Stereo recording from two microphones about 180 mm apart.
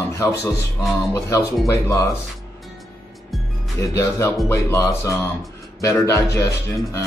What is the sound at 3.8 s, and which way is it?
Speech, 15° left (ahead or behind).